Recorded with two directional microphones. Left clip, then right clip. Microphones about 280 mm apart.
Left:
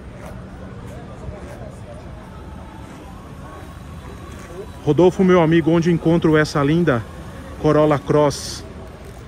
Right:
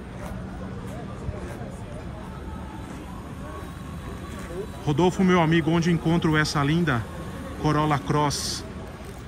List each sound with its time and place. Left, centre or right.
4.8 s a man's voice: centre